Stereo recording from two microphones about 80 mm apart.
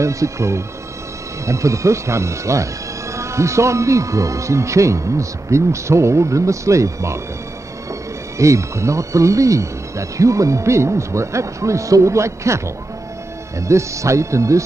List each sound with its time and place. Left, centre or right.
0.0 s speech: right
8.4 s speech: right